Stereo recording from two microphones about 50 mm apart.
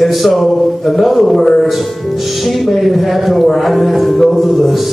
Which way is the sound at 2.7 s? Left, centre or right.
Centre.